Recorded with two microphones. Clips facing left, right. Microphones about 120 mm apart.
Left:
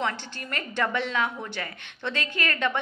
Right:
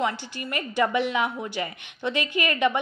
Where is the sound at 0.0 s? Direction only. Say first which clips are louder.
Right 3 dB; 10° right (ahead or behind).